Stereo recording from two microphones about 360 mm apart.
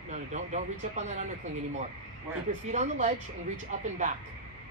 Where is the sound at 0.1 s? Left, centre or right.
Centre.